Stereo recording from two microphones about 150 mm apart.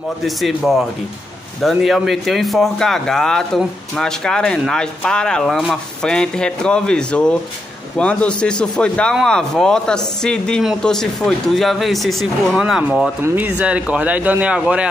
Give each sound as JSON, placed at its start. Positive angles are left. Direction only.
{"t": 0.2, "sound": "speech", "side_deg": 0}
{"t": 13.2, "sound": "speech", "side_deg": -15}